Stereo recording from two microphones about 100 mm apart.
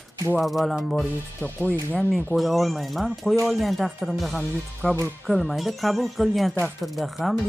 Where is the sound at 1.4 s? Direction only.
15° left (ahead or behind).